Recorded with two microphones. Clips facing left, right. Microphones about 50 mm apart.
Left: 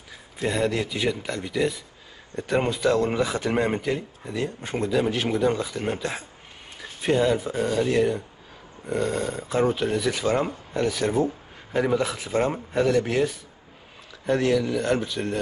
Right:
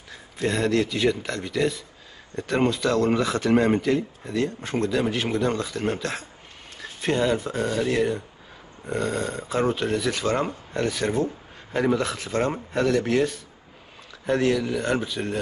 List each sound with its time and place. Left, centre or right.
0.1 s speech: centre